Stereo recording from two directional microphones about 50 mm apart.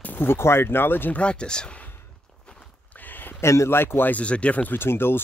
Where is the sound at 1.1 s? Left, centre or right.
Left.